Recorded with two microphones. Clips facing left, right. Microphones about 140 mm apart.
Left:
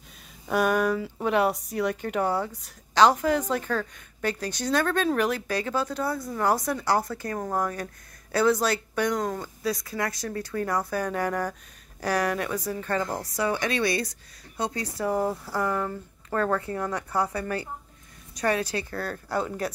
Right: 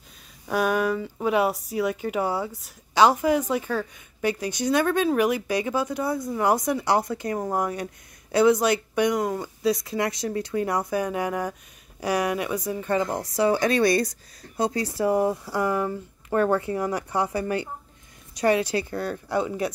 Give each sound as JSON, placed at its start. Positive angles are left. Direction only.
{"t": 0.5, "sound": "a woman's voice", "side_deg": 0}
{"t": 9.6, "sound": "a woman's voice", "side_deg": -20}
{"t": 13.4, "sound": "speech", "side_deg": -35}
{"t": 14.6, "sound": "speech", "side_deg": -30}
{"t": 16.4, "sound": "speech", "side_deg": -25}
{"t": 19.3, "sound": "a woman's voice", "side_deg": -10}